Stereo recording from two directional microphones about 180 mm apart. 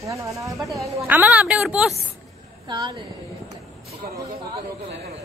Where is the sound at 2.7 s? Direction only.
25° right (ahead or behind).